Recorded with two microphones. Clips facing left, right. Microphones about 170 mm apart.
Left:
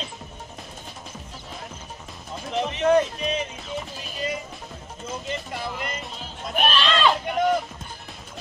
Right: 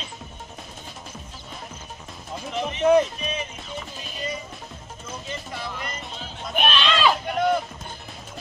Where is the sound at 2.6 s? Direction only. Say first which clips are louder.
Right 2 dB; 5° right (ahead or behind).